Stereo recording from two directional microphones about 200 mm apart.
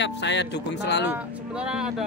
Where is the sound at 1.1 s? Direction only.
5° right (ahead or behind).